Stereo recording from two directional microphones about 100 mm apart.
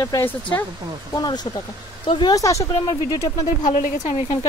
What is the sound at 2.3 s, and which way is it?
Speech, 35° left (ahead or behind).